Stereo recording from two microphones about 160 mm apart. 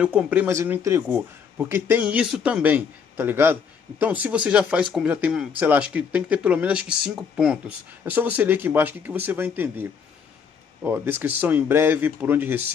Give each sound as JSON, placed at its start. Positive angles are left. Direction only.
{"t": 0.0, "sound": "speech", "side_deg": -10}